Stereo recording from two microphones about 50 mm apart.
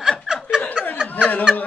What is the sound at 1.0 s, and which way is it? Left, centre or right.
Chuckle, centre.